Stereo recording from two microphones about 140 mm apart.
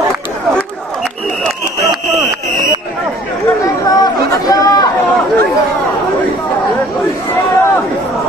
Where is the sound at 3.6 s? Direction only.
25° left (ahead or behind).